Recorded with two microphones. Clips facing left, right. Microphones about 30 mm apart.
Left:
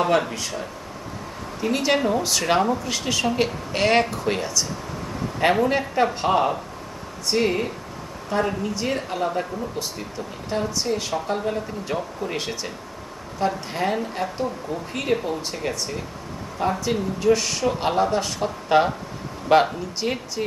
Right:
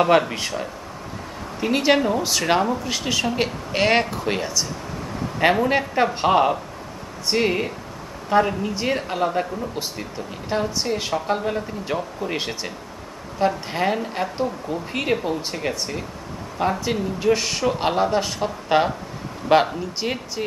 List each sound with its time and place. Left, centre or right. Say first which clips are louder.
0.3 s speech: right 3 dB; right
2.0 s speech: right 1 dB; centre